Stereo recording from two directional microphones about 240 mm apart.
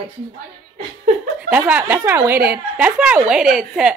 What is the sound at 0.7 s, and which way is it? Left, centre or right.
Chuckle, right.